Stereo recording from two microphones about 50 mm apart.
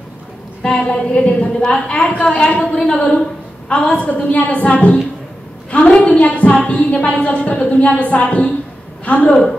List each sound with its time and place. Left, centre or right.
0.6 s a woman's voice: left